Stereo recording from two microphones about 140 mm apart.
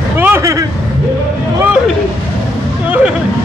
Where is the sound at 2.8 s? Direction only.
10° right (ahead or behind).